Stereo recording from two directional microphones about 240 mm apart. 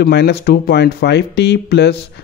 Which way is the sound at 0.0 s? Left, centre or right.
Left.